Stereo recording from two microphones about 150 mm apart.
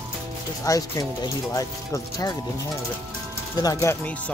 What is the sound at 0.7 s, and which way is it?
Speech, 25° left (ahead or behind).